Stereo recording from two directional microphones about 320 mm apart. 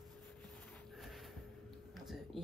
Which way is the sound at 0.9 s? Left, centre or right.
Centre.